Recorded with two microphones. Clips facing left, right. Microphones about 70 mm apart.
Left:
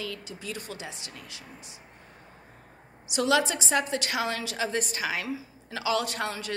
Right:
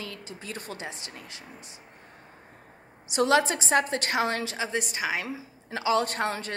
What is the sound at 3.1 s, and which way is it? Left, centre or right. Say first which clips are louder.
A woman's voice: right 2 dB; right.